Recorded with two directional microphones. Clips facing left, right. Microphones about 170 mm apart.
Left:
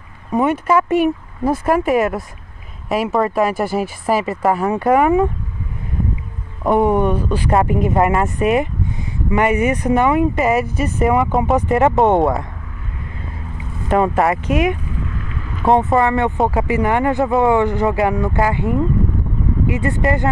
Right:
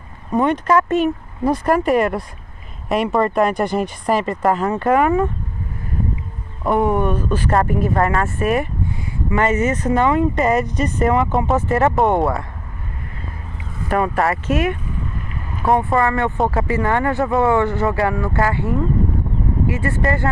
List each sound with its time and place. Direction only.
0.3 s speech: 5° left (ahead or behind)
6.6 s speech: 15° left (ahead or behind)
13.8 s speech: 20° left (ahead or behind)